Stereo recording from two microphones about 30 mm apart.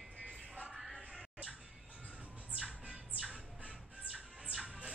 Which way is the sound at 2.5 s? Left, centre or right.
Right.